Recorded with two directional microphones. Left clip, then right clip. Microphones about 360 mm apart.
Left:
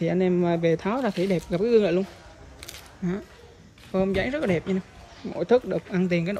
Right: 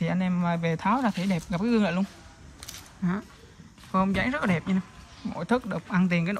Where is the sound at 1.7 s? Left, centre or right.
Centre.